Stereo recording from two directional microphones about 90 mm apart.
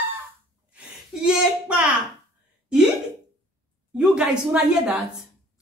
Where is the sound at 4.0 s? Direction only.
10° right (ahead or behind).